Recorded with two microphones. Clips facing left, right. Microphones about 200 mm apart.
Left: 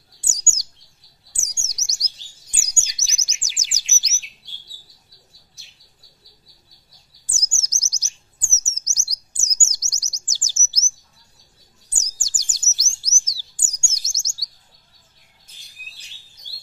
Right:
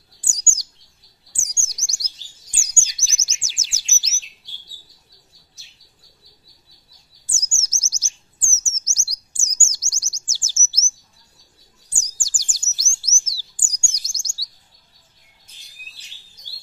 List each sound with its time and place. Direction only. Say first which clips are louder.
0.3 s chirp: even; 20° left (ahead or behind)
7.3 s chirp: even; 15° left (ahead or behind)
11.9 s bird: even; 20° left (ahead or behind)